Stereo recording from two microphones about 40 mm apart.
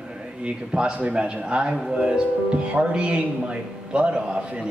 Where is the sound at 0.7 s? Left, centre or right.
Right.